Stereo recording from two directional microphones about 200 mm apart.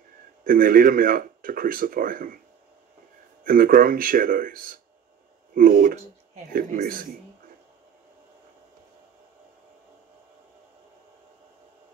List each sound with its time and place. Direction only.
0.4 s speech: 45° right (ahead or behind)
3.4 s speech: 45° right (ahead or behind)